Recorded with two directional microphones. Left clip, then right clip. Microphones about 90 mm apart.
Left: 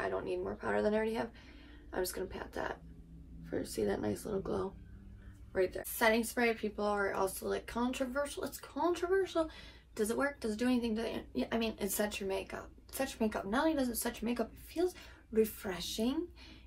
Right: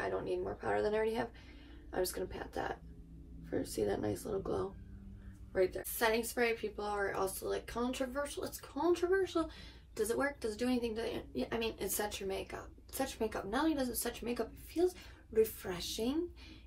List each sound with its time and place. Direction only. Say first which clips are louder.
0.0 s a woman's voice: left 1 dB; 10° left (ahead or behind); by 9.4 s 30° left (ahead or behind)
9.9 s a woman's voice: left 1 dB; 15° left (ahead or behind)